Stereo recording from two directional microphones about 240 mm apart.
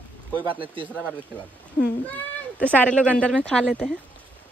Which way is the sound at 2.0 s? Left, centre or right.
Centre.